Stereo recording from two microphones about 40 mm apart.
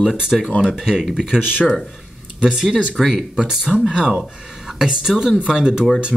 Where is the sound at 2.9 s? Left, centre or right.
Centre.